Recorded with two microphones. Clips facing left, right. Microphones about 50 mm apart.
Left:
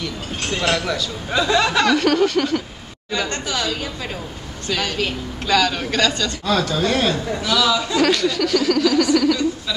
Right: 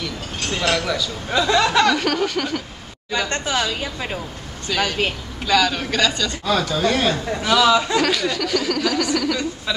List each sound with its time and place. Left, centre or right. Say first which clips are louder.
0.0 s speech: left 1 dB; centre
3.3 s a woman's voice: right 2 dB; right
4.6 s a woman's voice: right 1 dB; centre
7.4 s a woman's voice: right 4 dB; centre
8.0 s speech: left 3 dB; centre